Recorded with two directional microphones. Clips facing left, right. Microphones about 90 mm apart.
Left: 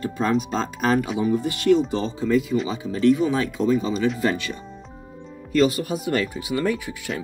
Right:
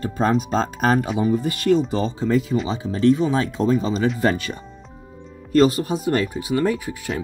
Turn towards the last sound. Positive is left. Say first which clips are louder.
# right 2 dB
turn(degrees=-35)  # may be behind; listen again after turning